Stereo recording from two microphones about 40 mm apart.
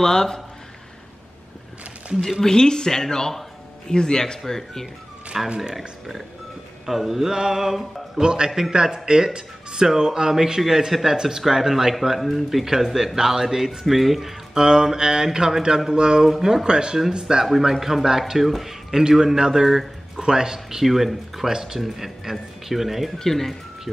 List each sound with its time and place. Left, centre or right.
0.0 s speech: centre
2.4 s speech: centre
5.3 s speech: centre
8.2 s speech: right; by 14.3 s centre
14.5 s speech: centre
16.3 s speech: centre
17.5 s speech: centre
23.1 s speech: centre